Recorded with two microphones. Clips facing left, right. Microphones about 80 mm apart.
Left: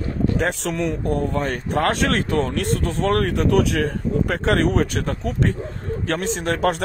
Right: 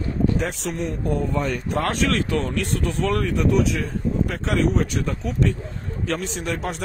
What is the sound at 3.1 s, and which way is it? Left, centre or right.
Speech, left.